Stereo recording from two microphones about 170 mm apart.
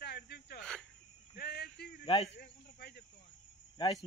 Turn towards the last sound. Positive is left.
turn(degrees=25)  # may be behind; listen again after turning